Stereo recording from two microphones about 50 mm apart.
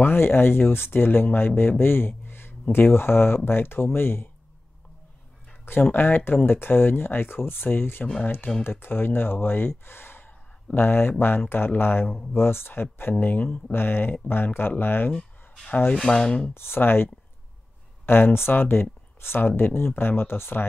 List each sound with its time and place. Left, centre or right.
0.0 s speech: left
5.7 s speech: left
13.2 s speech: left
16.1 s rub: centre
16.5 s speech: left